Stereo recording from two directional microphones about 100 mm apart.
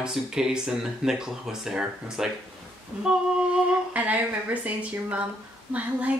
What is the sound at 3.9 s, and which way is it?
Speech, 15° right (ahead or behind).